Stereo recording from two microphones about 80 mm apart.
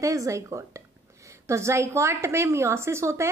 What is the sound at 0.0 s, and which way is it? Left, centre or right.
A woman's voice, right.